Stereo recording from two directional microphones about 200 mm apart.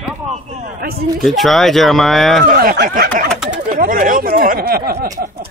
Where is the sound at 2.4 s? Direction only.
45° right (ahead or behind).